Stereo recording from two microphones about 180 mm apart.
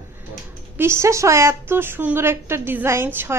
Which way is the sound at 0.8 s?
15° right (ahead or behind).